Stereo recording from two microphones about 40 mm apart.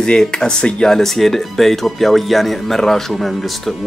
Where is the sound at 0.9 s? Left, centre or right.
Centre.